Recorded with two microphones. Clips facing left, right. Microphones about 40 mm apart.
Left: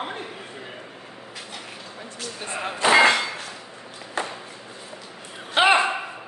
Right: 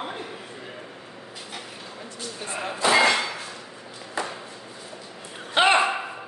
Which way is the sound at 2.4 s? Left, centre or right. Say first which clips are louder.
Left 2 dB; left.